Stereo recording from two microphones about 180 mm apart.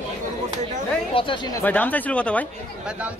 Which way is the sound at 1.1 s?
30° left (ahead or behind).